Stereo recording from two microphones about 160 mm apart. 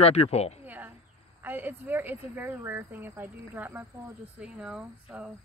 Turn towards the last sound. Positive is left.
turn(degrees=-10)  # may be behind; listen again after turning